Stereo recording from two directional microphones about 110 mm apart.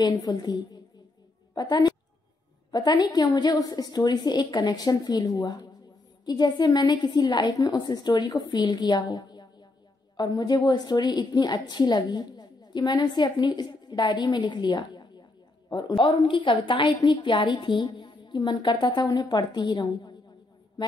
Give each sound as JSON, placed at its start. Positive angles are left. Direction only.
{"t": 0.0, "sound": "a woman's voice", "side_deg": 35}
{"t": 16.0, "sound": "a woman's voice", "side_deg": 50}